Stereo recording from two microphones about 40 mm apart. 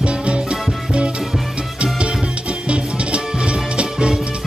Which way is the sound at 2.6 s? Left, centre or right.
Right.